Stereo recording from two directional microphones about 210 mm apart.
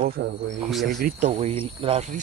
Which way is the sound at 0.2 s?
60° right (ahead or behind).